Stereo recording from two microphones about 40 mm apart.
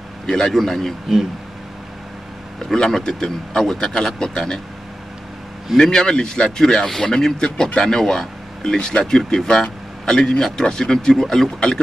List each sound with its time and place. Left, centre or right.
0.5 s speech: centre
2.7 s speech: centre
5.8 s speech: centre